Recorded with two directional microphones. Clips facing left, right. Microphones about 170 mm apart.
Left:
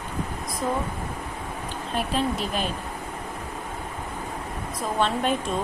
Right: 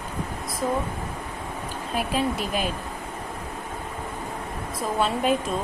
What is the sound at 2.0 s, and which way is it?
Speech, 10° right (ahead or behind).